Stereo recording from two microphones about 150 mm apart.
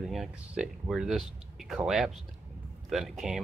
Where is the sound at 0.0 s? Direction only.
5° right (ahead or behind).